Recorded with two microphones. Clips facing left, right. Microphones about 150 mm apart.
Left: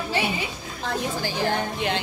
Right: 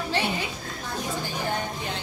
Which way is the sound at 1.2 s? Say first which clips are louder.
Left 4 dB; 85° left.